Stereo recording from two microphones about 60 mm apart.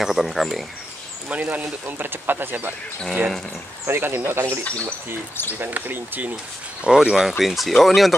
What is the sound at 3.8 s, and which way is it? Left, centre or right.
Speech, right.